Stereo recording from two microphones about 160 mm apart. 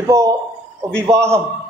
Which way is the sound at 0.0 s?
20° right (ahead or behind).